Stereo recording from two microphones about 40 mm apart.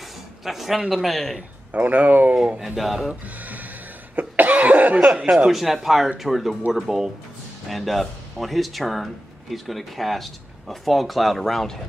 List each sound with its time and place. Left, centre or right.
0.5 s speech: centre
1.7 s speech: right
2.6 s speech: centre
3.3 s cough: right
4.9 s speech: right
5.5 s speech: centre